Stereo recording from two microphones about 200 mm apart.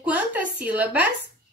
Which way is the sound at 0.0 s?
5° right (ahead or behind).